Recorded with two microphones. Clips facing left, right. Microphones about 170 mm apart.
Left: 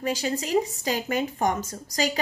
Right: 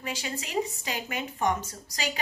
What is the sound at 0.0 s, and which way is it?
A woman's voice, 40° left (ahead or behind).